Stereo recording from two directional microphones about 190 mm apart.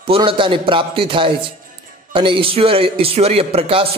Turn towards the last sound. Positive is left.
turn(degrees=-30)  # may be behind; listen again after turning